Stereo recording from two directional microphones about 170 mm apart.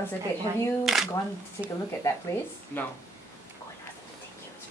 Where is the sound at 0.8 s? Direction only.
Centre (ahead or behind).